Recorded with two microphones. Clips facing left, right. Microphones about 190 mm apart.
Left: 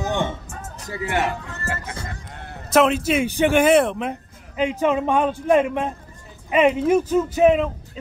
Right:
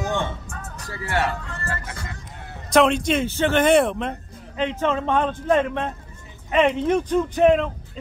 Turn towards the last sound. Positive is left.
turn(degrees=5)  # may be behind; listen again after turning